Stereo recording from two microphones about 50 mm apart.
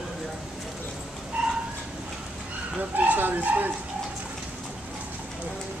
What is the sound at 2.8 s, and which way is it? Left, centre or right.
Bow-wow, right.